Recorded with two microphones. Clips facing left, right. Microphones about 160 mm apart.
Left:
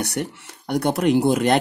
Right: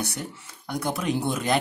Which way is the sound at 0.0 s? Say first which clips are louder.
Left 6 dB; 70° left (ahead or behind).